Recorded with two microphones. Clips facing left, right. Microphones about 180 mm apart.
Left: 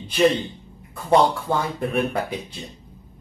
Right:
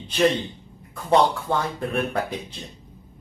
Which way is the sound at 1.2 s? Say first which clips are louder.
Left 1 dB; 10° left (ahead or behind).